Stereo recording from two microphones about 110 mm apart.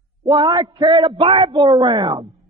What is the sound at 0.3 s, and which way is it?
A man's voice, 45° right (ahead or behind).